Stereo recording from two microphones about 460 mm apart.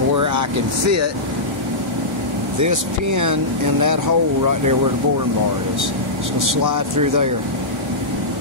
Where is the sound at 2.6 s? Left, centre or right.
Right.